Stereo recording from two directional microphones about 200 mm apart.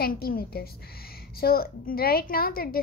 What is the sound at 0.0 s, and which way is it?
A child's voice, 45° left (ahead or behind).